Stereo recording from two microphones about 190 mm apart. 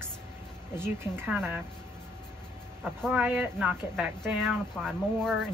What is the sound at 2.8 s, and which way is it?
Speech, 5° right (ahead or behind).